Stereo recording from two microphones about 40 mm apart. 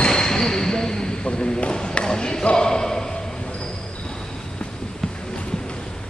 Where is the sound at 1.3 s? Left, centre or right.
Left.